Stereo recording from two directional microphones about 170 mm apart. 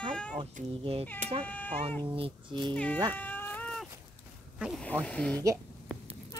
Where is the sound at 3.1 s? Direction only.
10° left (ahead or behind).